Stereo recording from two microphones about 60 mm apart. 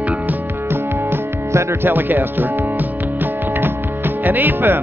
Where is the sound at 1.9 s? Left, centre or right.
Right.